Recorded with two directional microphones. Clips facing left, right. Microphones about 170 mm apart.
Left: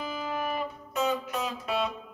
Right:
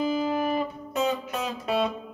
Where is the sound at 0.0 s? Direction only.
30° right (ahead or behind).